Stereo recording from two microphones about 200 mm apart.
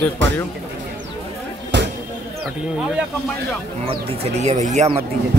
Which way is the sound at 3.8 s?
30° right (ahead or behind).